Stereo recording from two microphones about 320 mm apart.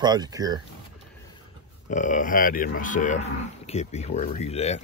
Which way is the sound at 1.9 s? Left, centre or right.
Left.